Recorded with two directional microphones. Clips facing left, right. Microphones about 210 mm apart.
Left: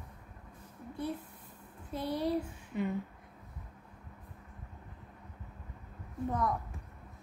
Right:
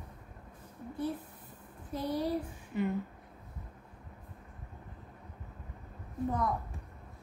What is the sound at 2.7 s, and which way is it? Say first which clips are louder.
Speech: right 2 dB; centre (ahead or behind).